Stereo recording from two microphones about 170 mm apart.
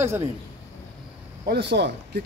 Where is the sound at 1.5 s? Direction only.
80° right.